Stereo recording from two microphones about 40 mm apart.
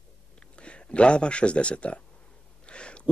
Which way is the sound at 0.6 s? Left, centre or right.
Left.